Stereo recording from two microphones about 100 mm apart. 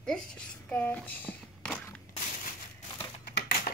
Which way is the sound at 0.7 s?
20° left (ahead or behind).